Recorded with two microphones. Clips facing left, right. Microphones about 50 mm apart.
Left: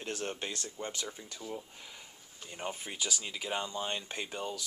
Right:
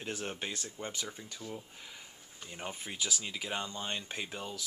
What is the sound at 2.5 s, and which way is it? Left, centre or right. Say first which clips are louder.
Speech: left 2 dB; centre.